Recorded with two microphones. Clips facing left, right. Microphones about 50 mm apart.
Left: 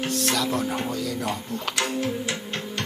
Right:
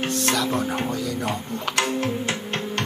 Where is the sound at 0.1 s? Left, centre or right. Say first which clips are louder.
Right 1 dB; centre.